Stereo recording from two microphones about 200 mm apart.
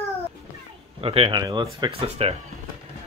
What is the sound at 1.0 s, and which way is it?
Speech, 25° right (ahead or behind).